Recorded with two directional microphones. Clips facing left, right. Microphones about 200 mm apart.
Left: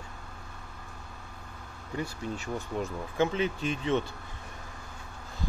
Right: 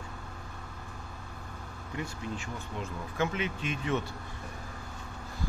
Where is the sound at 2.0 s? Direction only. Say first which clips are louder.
Left 3 dB; 40° left (ahead or behind).